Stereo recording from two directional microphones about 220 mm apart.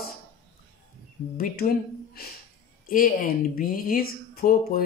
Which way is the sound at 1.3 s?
40° left (ahead or behind).